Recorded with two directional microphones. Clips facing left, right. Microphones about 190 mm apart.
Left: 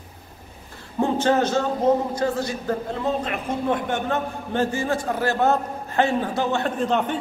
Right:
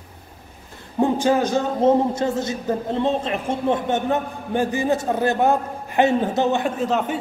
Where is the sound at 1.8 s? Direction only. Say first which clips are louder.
Right 5 dB; 25° right (ahead or behind).